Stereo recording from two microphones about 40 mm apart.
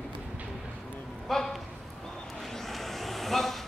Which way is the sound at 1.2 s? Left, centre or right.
Centre.